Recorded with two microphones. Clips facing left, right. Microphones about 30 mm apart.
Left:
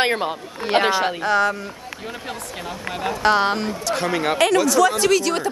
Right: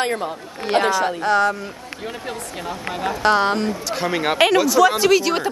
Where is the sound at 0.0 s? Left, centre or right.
Left.